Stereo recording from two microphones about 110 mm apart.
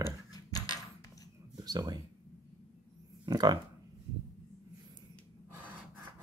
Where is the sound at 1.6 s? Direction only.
35° right (ahead or behind).